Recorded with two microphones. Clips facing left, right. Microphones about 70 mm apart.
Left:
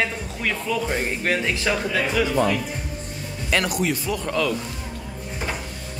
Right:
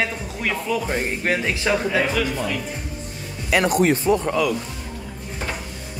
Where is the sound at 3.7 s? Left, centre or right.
Right.